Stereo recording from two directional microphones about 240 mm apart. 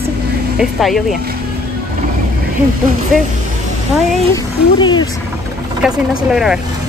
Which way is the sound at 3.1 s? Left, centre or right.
Centre.